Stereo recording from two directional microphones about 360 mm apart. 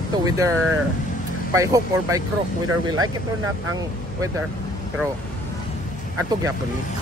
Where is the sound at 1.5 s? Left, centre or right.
Centre.